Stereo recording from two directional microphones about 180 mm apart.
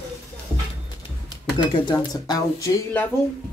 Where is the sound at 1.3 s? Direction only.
25° left (ahead or behind).